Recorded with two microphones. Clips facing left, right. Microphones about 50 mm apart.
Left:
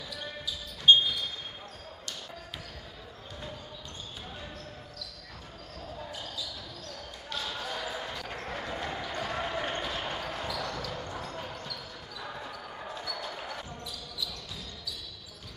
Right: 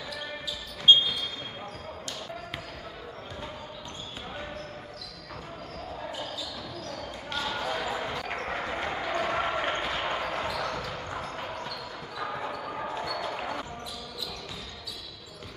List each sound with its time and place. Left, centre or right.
7.2 s basketball bounce: right